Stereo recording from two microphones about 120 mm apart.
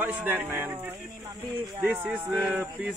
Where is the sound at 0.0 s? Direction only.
15° right (ahead or behind).